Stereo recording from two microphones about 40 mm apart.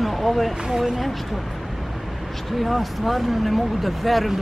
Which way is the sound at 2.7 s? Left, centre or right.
Centre.